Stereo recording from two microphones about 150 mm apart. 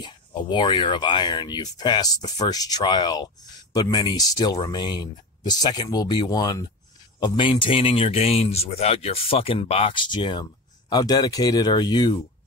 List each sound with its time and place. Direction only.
0.0 s speech: 30° left (ahead or behind)